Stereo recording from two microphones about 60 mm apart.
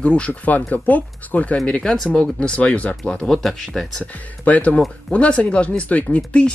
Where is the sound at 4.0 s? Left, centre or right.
Left.